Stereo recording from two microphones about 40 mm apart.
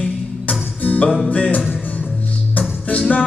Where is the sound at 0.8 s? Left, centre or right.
Left.